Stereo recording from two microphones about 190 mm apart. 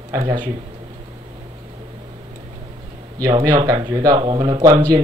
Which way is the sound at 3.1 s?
20° right (ahead or behind).